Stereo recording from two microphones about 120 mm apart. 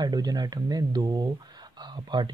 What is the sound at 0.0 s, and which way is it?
Speech, 35° right (ahead or behind).